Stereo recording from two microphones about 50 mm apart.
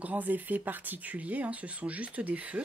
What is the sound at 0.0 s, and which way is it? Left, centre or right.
Speech, right.